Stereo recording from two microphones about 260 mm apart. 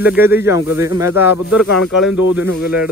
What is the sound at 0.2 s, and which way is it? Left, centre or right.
Speech, centre.